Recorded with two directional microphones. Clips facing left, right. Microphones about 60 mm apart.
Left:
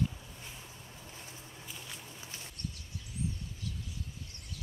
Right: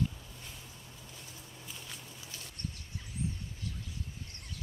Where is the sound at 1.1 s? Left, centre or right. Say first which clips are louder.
Left 3 dB; left.